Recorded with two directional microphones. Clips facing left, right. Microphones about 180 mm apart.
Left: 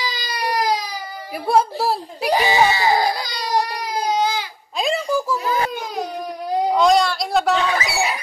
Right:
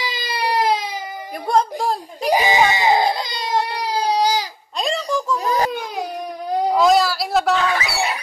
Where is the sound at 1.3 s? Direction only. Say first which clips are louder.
Left 1 dB; 5° left (ahead or behind).